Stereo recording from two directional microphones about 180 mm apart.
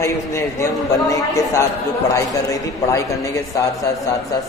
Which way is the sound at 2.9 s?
15° left (ahead or behind).